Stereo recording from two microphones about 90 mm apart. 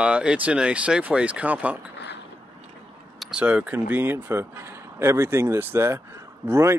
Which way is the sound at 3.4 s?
15° right (ahead or behind).